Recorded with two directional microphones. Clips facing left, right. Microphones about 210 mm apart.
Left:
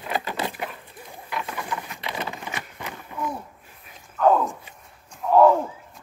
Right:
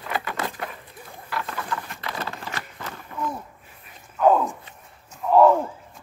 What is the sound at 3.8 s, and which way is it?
Wild animals, 5° right (ahead or behind).